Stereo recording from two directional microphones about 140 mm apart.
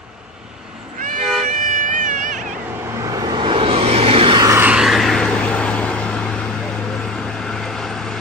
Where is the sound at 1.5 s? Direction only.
65° right (ahead or behind).